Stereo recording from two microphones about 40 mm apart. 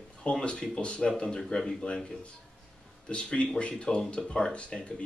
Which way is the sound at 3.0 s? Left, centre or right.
Left.